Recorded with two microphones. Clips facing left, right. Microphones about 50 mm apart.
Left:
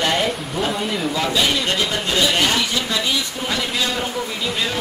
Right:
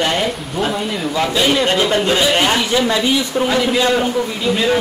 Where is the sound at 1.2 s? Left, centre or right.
Centre.